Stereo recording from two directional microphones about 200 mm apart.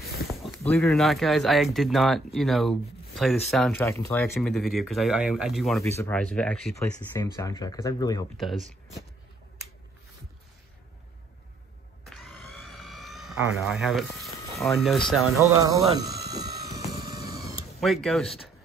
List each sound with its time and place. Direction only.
0.3 s speech: centre (ahead or behind)
3.8 s speech: 15° left (ahead or behind)
4.4 s speech: centre (ahead or behind)
7.2 s speech: 15° left (ahead or behind)
8.4 s speech: centre (ahead or behind)
12.0 s vehicle: centre (ahead or behind)
15.0 s speech: centre (ahead or behind)
15.5 s speech: 15° right (ahead or behind)
16.3 s a sound: 15° right (ahead or behind)
17.7 s speech: centre (ahead or behind)